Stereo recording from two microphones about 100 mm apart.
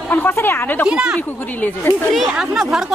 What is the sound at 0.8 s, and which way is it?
Speech, 10° right (ahead or behind).